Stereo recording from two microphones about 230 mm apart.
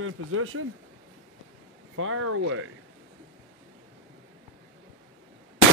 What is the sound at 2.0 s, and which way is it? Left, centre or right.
Speech, right.